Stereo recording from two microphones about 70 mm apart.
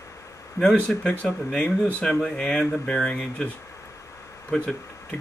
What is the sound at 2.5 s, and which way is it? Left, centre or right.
Speech, left.